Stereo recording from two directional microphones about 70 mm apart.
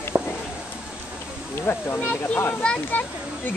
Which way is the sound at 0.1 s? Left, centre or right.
Right.